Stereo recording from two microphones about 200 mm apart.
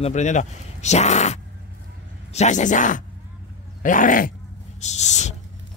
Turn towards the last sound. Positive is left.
turn(degrees=35)  # may be behind; listen again after turning